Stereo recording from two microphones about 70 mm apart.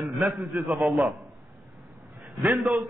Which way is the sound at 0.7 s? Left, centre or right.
Centre.